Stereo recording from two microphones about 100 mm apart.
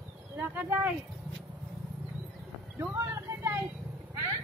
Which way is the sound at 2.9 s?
30° right (ahead or behind).